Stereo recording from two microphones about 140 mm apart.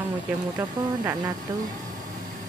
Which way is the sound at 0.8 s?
35° right (ahead or behind).